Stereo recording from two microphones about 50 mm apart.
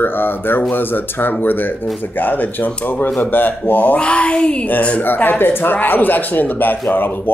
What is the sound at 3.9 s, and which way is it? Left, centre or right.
Speech, left.